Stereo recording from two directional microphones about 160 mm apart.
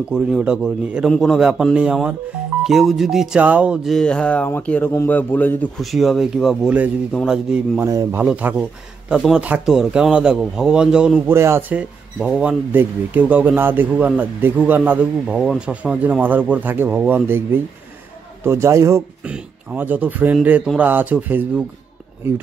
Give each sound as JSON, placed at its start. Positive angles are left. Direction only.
{"t": 0.1, "sound": "speech", "side_deg": -5}
{"t": 5.8, "sound": "speech", "side_deg": 0}
{"t": 7.8, "sound": "speech", "side_deg": -20}